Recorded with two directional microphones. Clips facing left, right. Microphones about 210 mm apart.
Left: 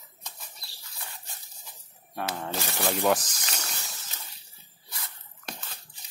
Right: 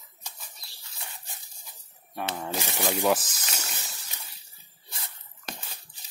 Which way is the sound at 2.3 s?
10° right (ahead or behind).